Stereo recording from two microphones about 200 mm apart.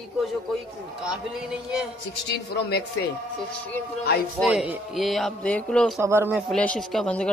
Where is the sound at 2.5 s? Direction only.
55° left (ahead or behind).